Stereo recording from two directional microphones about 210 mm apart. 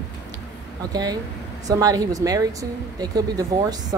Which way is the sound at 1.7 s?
20° right (ahead or behind).